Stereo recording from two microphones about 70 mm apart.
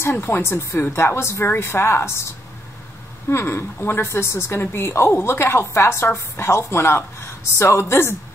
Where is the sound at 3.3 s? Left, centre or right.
Left.